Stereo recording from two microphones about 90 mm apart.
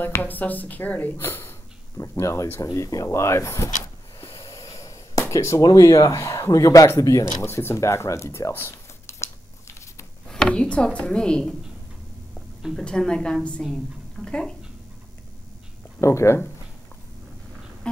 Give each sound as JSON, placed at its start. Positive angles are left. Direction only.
{"t": 0.0, "sound": "speech", "side_deg": 20}
{"t": 4.3, "sound": "a sound", "side_deg": 35}
{"t": 5.3, "sound": "speech", "side_deg": 35}
{"t": 7.4, "sound": "a sound", "side_deg": 30}
{"t": 10.2, "sound": "speech", "side_deg": 10}
{"t": 12.7, "sound": "a woman's voice", "side_deg": 10}
{"t": 16.0, "sound": "speech", "side_deg": 35}